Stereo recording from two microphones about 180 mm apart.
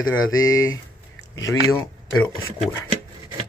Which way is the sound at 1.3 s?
20° left (ahead or behind).